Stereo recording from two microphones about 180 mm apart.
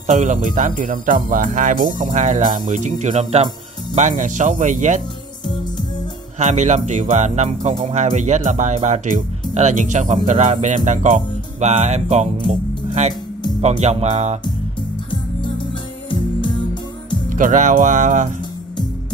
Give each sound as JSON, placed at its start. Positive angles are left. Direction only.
{"t": 0.0, "sound": "speech", "side_deg": -40}
{"t": 6.4, "sound": "speech", "side_deg": -40}
{"t": 17.3, "sound": "speech", "side_deg": -45}